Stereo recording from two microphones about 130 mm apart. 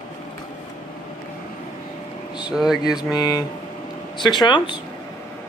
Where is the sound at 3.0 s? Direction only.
30° left (ahead or behind).